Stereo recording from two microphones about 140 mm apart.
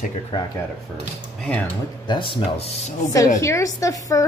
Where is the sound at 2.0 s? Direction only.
35° left (ahead or behind).